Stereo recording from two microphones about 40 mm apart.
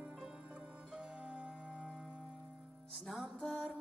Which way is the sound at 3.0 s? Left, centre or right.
Centre.